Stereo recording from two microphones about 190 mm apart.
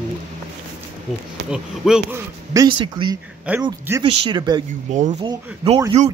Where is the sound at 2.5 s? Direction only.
20° right (ahead or behind).